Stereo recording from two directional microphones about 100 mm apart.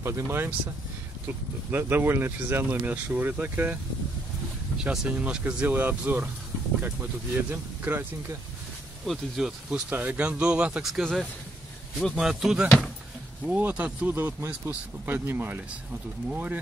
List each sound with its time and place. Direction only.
0.0 s speech: 25° right (ahead or behind)
4.7 s speech: 10° right (ahead or behind)
9.0 s a man's voice: centre (ahead or behind)
9.8 s a man's voice: 20° right (ahead or behind)
13.5 s speech: 15° right (ahead or behind)